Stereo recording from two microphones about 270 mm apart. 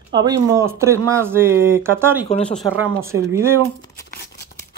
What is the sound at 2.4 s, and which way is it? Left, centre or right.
Speech, centre.